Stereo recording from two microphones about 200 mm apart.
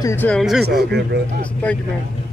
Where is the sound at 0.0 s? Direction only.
10° left (ahead or behind).